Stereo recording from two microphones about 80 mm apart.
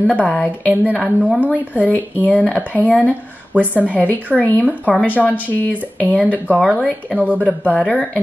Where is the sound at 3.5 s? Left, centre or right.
Centre.